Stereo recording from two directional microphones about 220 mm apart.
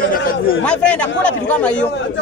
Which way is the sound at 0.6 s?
5° left (ahead or behind).